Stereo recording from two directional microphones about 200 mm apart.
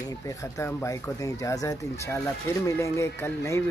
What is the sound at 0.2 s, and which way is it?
Speech, 15° left (ahead or behind).